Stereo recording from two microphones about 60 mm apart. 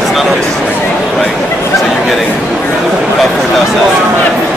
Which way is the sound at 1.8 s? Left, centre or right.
Centre.